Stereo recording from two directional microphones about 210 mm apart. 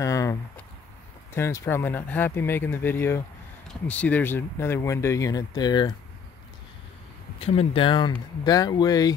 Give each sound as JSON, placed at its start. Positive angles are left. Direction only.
{"t": 0.0, "sound": "a sound", "side_deg": 15}
{"t": 1.3, "sound": "speech", "side_deg": 15}
{"t": 7.3, "sound": "speech", "side_deg": 30}